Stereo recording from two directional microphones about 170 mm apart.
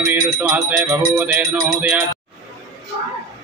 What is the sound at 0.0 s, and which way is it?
Music, 10° right (ahead or behind).